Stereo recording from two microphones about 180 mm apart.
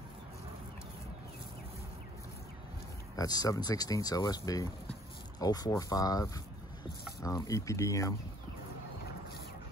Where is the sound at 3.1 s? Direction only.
20° left (ahead or behind).